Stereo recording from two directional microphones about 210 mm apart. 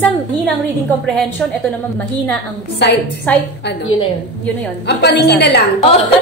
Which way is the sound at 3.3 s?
5° left (ahead or behind).